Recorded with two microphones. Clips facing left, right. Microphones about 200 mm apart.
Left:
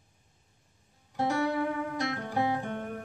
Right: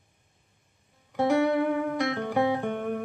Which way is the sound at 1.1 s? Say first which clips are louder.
Right 6 dB; 60° right (ahead or behind).